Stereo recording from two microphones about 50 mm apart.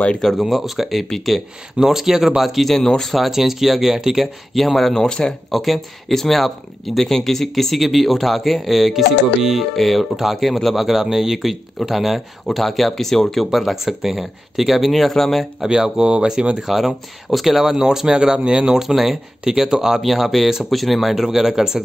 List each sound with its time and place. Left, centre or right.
0.2 s speech: centre
4.6 s speech: centre
5.5 s speech: centre
15.6 s speech: centre
16.6 s speech: centre